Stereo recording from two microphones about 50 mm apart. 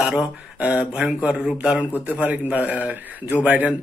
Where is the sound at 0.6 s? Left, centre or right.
Right.